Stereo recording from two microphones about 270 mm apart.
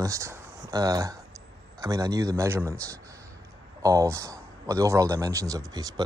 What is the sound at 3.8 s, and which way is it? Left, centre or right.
A man's voice, centre.